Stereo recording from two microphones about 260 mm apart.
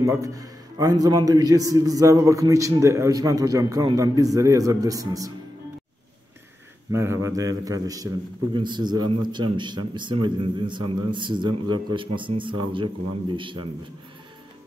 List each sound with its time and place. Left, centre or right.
0.0 s a man's voice: centre
6.9 s a man's voice: centre